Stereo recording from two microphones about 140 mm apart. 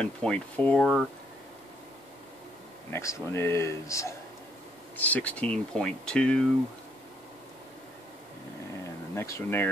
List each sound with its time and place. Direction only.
0.0 s speech: 5° left (ahead or behind)
2.9 s speech: 20° left (ahead or behind)
5.0 s speech: 10° left (ahead or behind)
9.1 s speech: 20° left (ahead or behind)